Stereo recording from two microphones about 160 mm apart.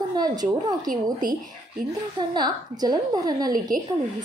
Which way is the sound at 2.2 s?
25° right (ahead or behind).